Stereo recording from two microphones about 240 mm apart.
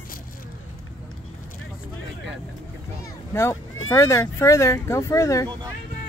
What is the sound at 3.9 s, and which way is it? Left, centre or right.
Speech, centre.